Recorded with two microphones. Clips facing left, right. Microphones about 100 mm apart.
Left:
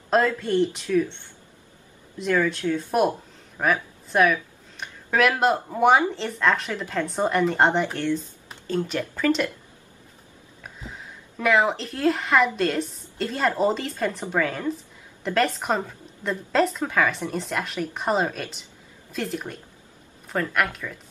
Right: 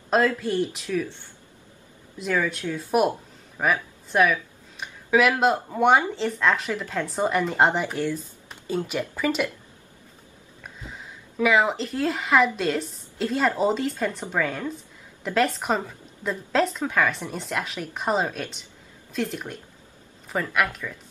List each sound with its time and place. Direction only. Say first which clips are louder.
0.4 s speech: left 3 dB; 5° right (ahead or behind)
2.1 s speech: left 3 dB; 5° right (ahead or behind)
3.5 s a sound: left 1 dB; centre (ahead or behind)
5.4 s speech: left 1 dB; centre (ahead or behind)
10.6 s a sound: left 1 dB; centre (ahead or behind)
12.5 s speech: left 1 dB; centre (ahead or behind)